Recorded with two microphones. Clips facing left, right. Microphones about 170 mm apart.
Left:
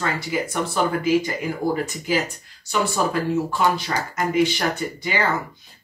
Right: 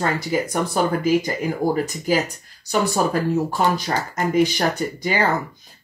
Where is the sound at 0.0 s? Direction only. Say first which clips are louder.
Right 3 dB; 40° right (ahead or behind).